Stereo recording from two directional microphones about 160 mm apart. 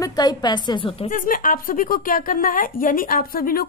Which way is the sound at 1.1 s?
60° left (ahead or behind).